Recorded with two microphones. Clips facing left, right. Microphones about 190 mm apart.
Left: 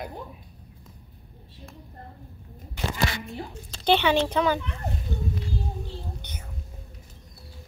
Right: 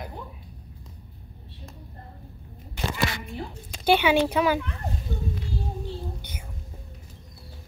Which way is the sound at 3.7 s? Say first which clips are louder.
Right 1 dB; 10° right (ahead or behind).